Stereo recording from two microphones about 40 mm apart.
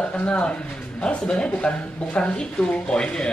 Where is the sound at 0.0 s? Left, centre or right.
Left.